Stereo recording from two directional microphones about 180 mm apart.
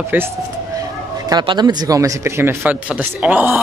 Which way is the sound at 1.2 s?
25° right (ahead or behind).